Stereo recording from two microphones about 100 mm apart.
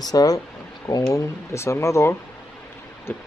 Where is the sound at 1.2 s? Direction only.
30° left (ahead or behind).